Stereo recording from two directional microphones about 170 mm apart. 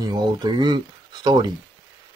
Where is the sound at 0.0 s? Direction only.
25° right (ahead or behind).